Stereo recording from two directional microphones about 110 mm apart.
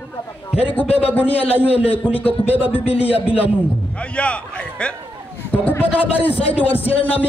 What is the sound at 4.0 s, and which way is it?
A man's voice, 10° left (ahead or behind).